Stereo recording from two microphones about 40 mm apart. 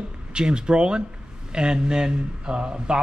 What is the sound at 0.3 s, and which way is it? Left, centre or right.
A man's voice, right.